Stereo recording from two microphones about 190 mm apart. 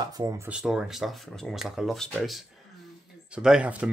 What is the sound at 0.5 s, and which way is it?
Speech, 5° right (ahead or behind).